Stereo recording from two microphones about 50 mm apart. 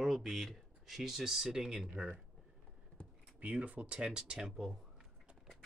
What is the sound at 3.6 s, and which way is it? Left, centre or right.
Speech, right.